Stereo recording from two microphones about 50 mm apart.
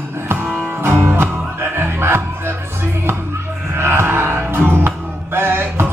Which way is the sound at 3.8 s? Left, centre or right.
Right.